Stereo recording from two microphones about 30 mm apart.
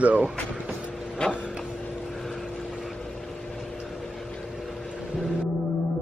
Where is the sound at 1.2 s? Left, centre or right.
Left.